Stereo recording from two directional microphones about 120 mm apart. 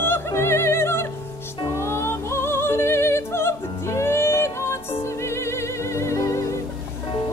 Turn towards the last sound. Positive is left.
turn(degrees=25)  # may be behind; listen again after turning